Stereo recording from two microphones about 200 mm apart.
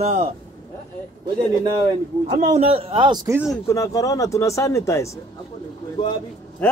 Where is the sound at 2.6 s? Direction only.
30° right (ahead or behind).